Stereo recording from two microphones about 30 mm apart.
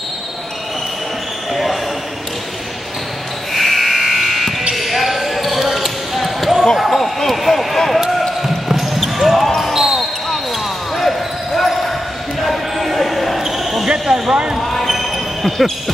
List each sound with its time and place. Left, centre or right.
1.5 s basketball bounce: centre
3.5 s sheep: centre
4.7 s basketball bounce: centre
6.9 s basketball bounce: centre
11.0 s basketball bounce: centre
13.8 s a sound: centre
14.9 s basketball bounce: centre